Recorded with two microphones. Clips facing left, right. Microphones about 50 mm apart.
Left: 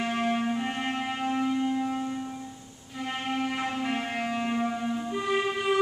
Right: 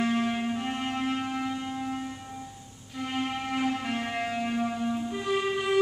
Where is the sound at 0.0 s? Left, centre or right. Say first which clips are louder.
Even; centre.